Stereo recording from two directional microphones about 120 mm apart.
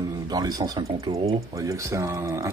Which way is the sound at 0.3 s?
35° right (ahead or behind).